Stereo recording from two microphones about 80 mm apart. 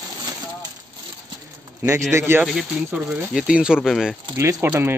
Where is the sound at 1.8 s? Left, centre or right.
Right.